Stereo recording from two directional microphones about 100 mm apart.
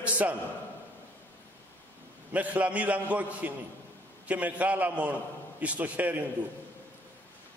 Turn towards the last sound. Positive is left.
turn(degrees=-15)  # may be behind; listen again after turning